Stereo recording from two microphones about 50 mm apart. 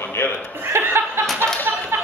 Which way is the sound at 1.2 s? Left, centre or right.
Right.